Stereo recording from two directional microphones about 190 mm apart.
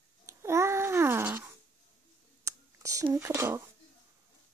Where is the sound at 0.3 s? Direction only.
15° right (ahead or behind).